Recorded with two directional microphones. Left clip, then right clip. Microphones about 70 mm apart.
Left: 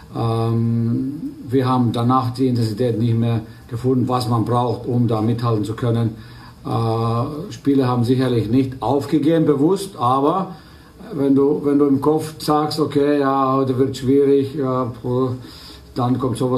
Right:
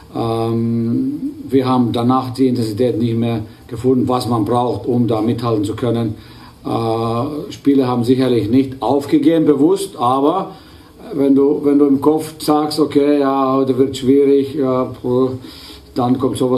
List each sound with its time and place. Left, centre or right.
0.1 s mantra: right
0.7 s humming: right
1.5 s a man's voice: right
11.7 s speech: right
12.2 s a man's voice: right